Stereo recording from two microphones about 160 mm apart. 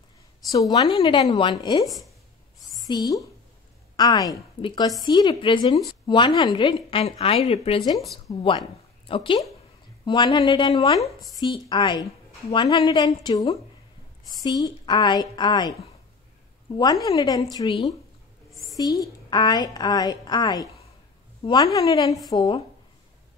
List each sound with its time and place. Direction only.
0.5 s a woman's voice: 25° left (ahead or behind)
1.9 s a woman's voice: centre (ahead or behind)
2.6 s a sound: 25° left (ahead or behind)
3.9 s a woman's voice: 25° left (ahead or behind)
16.7 s a woman's voice: 25° left (ahead or behind)
21.7 s a woman's voice: 25° left (ahead or behind)